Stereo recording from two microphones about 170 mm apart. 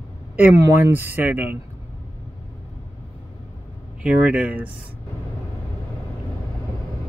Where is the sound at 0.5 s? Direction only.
15° right (ahead or behind).